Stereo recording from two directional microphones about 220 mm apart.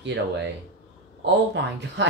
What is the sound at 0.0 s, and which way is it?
Speech, 55° right (ahead or behind).